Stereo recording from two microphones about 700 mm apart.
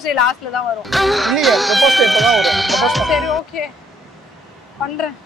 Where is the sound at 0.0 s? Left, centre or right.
Left.